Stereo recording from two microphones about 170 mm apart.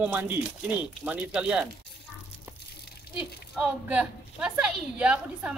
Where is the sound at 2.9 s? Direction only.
65° left (ahead or behind).